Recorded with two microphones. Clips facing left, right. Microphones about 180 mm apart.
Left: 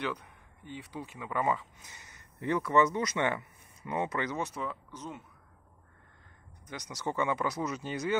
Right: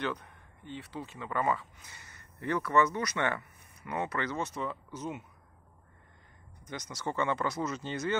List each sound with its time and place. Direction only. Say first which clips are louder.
0.0 s speech: right 1 dB; 10° left (ahead or behind)
4.9 s speech: right 4 dB; 10° right (ahead or behind)
6.6 s speech: even; 10° left (ahead or behind)